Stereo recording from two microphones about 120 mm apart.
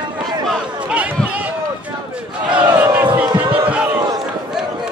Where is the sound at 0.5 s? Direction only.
10° right (ahead or behind).